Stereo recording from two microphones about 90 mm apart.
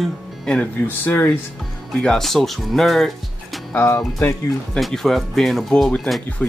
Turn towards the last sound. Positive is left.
turn(degrees=0)  # may be behind; listen again after turning